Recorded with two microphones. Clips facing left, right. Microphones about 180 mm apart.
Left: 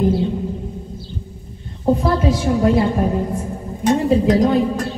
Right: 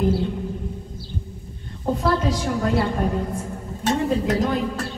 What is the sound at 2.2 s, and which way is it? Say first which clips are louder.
Speech: left 7 dB; 20° left (ahead or behind).